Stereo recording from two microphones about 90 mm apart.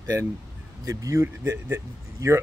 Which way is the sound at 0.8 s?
35° right (ahead or behind).